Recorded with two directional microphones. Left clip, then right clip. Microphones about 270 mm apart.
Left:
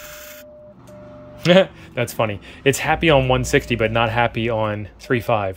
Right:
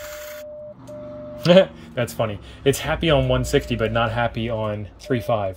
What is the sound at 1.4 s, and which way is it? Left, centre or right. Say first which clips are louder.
Speech: even; centre.